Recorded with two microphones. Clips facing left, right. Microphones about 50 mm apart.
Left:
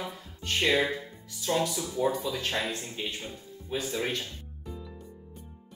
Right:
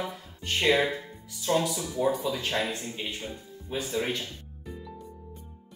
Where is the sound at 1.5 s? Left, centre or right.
Centre.